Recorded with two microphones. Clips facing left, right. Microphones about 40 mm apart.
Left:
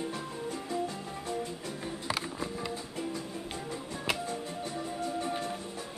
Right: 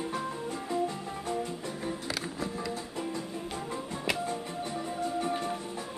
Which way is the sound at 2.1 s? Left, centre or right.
Left.